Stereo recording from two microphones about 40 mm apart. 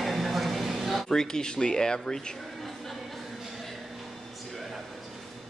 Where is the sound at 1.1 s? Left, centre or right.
Centre.